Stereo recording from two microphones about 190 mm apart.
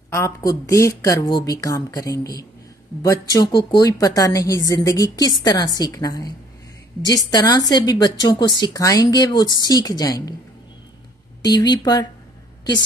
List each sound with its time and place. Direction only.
0.1 s a woman's voice: 15° left (ahead or behind)
11.4 s a woman's voice: 20° left (ahead or behind)